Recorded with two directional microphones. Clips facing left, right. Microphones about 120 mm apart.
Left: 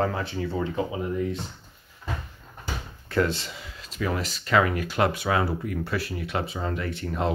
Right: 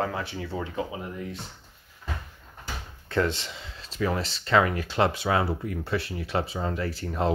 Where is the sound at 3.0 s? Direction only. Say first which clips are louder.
Left 1 dB; 20° right (ahead or behind).